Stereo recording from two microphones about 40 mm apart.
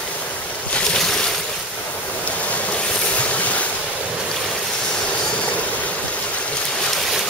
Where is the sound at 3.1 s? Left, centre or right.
Left.